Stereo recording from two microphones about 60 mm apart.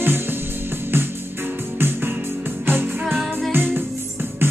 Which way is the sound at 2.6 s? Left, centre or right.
Right.